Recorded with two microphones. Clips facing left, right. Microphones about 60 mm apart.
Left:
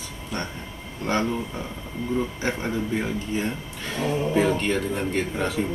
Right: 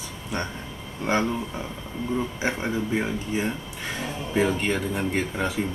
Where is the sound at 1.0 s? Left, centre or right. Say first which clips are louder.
Even; centre.